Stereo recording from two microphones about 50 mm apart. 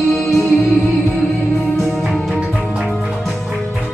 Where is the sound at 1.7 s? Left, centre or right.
Centre.